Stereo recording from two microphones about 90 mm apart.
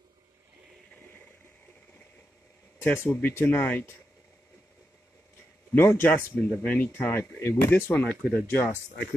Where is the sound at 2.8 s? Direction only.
20° left (ahead or behind).